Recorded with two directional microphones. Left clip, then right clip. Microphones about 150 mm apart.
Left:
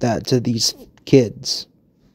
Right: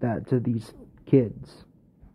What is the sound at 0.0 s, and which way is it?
Speech, 30° left (ahead or behind).